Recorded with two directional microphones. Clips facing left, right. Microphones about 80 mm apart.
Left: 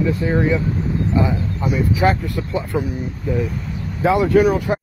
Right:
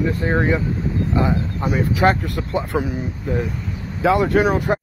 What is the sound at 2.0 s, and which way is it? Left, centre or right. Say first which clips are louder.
Speech: right 1 dB; right.